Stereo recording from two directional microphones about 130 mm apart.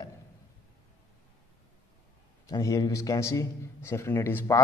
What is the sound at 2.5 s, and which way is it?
A man's voice, 30° left (ahead or behind).